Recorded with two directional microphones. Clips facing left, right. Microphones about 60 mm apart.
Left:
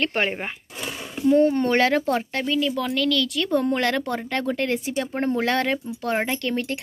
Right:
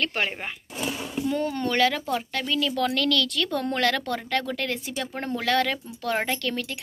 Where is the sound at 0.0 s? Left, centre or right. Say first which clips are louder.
Left 3 dB; left.